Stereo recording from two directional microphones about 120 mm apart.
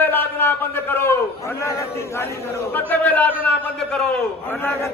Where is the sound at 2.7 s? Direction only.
15° left (ahead or behind).